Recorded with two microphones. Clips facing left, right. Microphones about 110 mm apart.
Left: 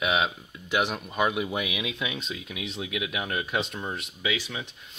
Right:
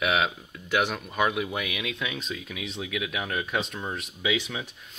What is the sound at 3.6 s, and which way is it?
Speech, centre (ahead or behind).